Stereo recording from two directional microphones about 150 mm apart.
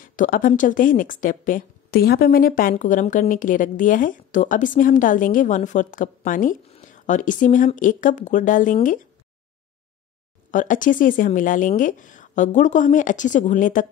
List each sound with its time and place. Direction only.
0.0 s a woman's voice: 65° left (ahead or behind)
2.7 s a woman's voice: 55° left (ahead or behind)
10.5 s a woman's voice: 60° left (ahead or behind)